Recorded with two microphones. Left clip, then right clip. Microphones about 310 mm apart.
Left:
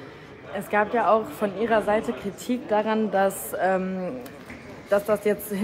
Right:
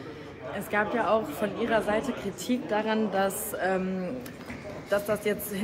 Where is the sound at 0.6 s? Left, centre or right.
Centre.